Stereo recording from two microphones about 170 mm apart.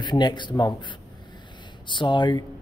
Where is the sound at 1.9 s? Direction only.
30° left (ahead or behind).